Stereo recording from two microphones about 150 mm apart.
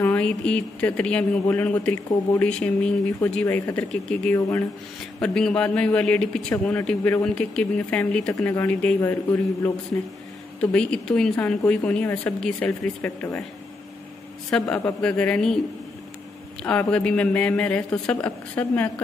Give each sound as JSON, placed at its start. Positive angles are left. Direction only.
{"t": 0.0, "sound": "speech", "side_deg": 10}
{"t": 4.4, "sound": "speech", "side_deg": 20}
{"t": 5.2, "sound": "speech", "side_deg": 5}
{"t": 14.5, "sound": "speech", "side_deg": 5}
{"t": 16.6, "sound": "speech", "side_deg": 10}